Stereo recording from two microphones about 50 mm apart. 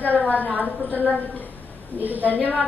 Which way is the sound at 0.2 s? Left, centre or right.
Left.